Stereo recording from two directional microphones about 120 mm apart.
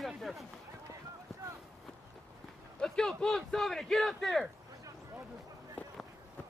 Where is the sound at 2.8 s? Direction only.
5° left (ahead or behind).